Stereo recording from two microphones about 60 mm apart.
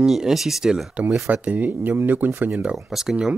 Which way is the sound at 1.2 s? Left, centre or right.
Right.